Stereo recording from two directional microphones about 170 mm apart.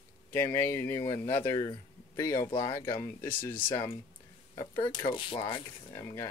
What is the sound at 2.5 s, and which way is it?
Speech, 30° left (ahead or behind).